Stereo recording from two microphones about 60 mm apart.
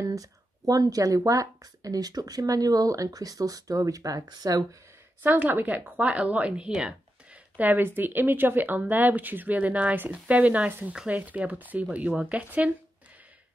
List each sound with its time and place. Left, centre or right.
0.0 s speech: right
5.2 s a woman's voice: right; by 7.0 s centre
7.5 s a woman's voice: right